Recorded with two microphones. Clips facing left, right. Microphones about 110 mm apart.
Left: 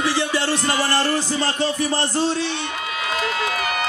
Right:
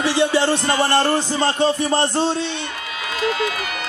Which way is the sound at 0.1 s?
25° right (ahead or behind).